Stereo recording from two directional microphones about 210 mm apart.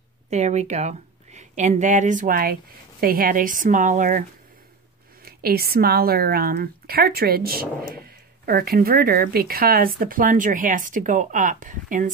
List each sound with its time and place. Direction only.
0.3 s a woman's voice: 30° right (ahead or behind)